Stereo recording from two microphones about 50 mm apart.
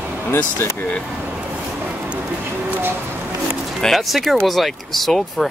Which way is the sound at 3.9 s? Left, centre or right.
Centre.